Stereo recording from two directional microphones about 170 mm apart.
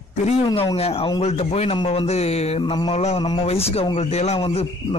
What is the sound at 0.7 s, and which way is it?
A man's voice, 35° left (ahead or behind).